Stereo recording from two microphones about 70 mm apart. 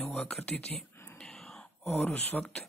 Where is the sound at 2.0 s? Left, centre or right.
Left.